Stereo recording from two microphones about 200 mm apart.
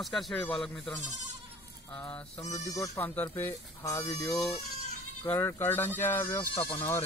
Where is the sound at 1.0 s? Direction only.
35° right (ahead or behind).